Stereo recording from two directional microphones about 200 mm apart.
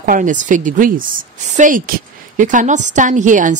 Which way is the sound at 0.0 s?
40° right (ahead or behind).